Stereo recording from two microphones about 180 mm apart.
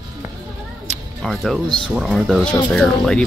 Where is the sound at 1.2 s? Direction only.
Centre (ahead or behind).